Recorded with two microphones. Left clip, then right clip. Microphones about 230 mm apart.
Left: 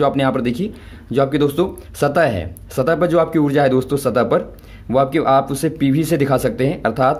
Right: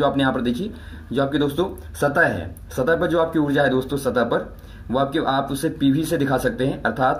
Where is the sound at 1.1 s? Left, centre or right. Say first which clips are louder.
Left 5 dB; left.